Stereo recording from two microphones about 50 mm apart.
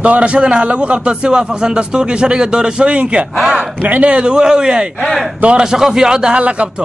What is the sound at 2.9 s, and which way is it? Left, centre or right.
A man's voice, right.